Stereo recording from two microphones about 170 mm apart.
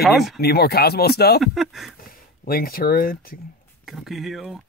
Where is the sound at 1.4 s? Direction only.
Centre (ahead or behind).